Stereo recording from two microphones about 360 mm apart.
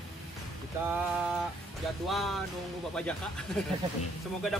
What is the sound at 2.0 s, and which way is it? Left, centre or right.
Speech, centre.